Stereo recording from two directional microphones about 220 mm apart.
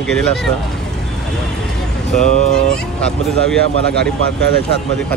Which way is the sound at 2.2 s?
35° left (ahead or behind).